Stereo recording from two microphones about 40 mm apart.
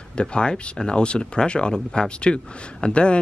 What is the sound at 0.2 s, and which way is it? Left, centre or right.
Speech, left.